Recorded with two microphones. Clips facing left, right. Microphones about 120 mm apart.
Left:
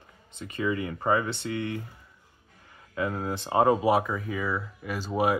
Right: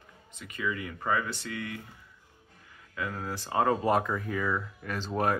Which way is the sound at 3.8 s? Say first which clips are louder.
Left 3 dB; 5° left (ahead or behind).